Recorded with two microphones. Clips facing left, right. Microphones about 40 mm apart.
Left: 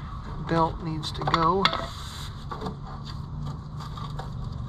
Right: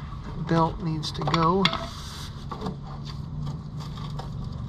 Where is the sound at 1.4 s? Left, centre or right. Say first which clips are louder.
Right 1 dB; right.